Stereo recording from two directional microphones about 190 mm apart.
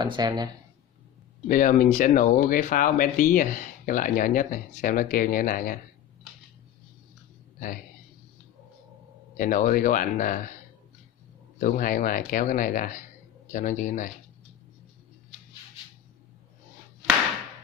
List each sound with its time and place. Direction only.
0.0 s speech: 25° right (ahead or behind)
1.5 s speech: 45° left (ahead or behind)
9.4 s speech: 45° left (ahead or behind)
11.6 s speech: 45° left (ahead or behind)